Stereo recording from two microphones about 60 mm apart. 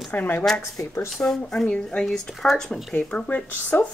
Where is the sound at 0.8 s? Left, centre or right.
Left.